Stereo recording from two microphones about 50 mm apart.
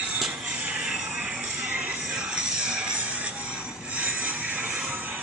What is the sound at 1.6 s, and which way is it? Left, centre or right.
Music, right.